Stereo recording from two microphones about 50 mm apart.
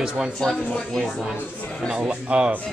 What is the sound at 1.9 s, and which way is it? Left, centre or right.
Speech, centre.